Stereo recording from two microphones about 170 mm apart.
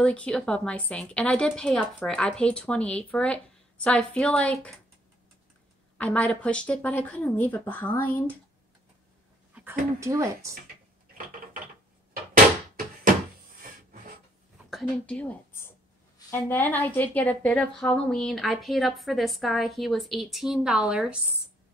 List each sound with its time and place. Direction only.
0.0 s a woman's voice: 5° left (ahead or behind)
5.9 s a woman's voice: 5° left (ahead or behind)
9.5 s a sound: 5° right (ahead or behind)
9.9 s speech: 20° right (ahead or behind)
14.7 s a woman's voice: 5° left (ahead or behind)